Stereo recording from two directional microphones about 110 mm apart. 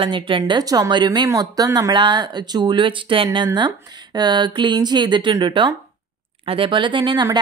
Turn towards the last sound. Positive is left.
turn(degrees=-40)  # may be behind; listen again after turning